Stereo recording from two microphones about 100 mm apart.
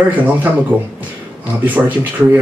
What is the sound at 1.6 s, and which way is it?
Speech, 15° right (ahead or behind).